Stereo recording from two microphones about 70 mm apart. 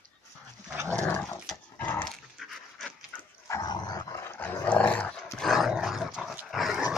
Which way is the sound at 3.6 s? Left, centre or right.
Left.